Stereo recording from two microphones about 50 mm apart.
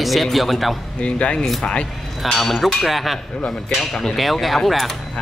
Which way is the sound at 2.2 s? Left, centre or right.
Centre.